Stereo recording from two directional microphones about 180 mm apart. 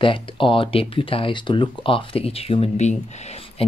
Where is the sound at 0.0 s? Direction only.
30° left (ahead or behind).